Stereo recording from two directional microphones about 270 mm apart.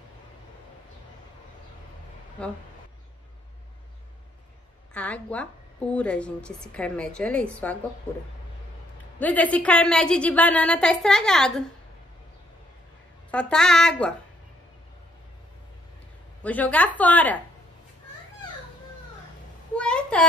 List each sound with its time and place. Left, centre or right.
2.4 s a woman's voice: centre
4.9 s a woman's voice: centre
9.2 s a woman's voice: centre
13.3 s a woman's voice: centre
16.4 s a woman's voice: centre
19.8 s a sound: centre